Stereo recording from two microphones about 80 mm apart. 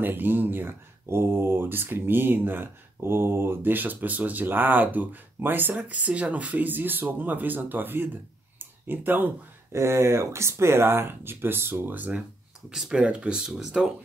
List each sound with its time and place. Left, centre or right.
0.0 s speech: right
12.6 s speech: centre